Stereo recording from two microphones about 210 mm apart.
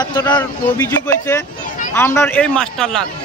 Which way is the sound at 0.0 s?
20° left (ahead or behind).